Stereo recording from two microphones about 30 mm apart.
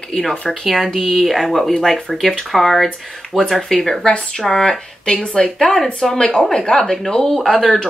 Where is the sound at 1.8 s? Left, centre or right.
Centre.